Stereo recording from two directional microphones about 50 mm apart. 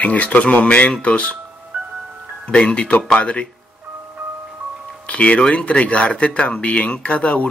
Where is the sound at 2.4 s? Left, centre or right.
Left.